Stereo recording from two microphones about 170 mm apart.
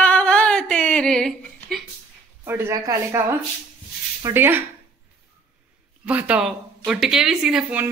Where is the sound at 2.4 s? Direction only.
15° right (ahead or behind).